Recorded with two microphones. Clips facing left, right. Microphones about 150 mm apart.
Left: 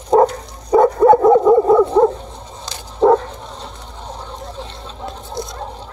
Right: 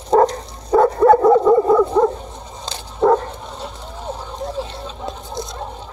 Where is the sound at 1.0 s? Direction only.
Centre (ahead or behind).